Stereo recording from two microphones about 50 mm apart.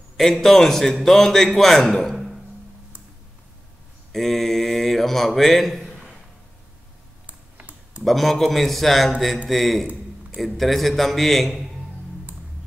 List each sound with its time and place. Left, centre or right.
0.2 s a man's voice: centre
4.1 s a man's voice: centre
7.2 s a sound: right
8.0 s a man's voice: centre